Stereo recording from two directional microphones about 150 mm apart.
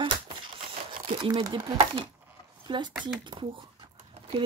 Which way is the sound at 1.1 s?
30° right (ahead or behind).